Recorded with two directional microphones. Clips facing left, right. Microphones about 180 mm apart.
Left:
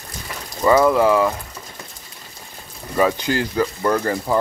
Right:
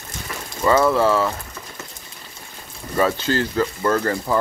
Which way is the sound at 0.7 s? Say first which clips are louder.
Left 2 dB; 15° left (ahead or behind).